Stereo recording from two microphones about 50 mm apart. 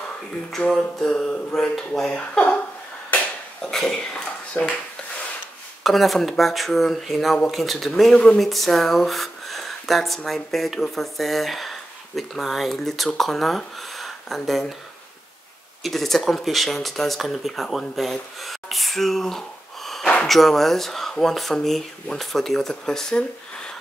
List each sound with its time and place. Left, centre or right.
0.7 s speech: centre
3.8 s speech: left
5.9 s speech: centre
15.8 s speech: centre
18.4 s gasp: centre
20.2 s speech: centre